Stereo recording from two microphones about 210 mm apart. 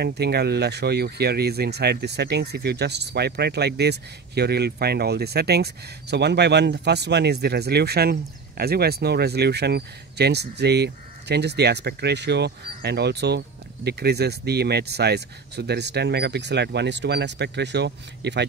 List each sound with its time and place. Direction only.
0.0 s speech: 50° right (ahead or behind)